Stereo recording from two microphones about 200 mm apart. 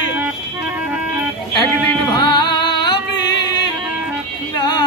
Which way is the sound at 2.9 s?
60° left (ahead or behind).